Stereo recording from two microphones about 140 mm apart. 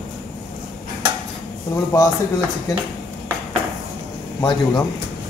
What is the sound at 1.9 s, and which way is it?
Speech, 25° left (ahead or behind).